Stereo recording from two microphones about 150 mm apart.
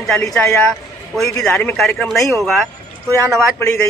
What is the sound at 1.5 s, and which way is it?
A man's voice, 5° left (ahead or behind).